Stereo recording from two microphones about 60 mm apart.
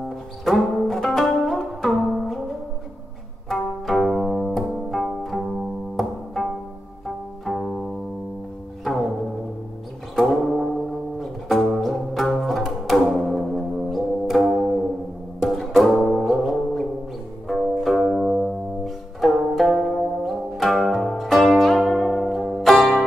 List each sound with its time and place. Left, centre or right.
0.0 s music: centre
7.4 s music: centre
10.1 s brass instrument: centre
11.1 s music: centre